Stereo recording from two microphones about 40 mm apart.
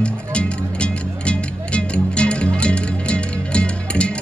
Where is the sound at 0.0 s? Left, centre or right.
Left.